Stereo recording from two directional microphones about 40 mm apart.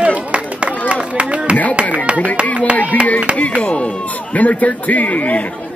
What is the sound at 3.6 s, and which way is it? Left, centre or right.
A man's voice, left.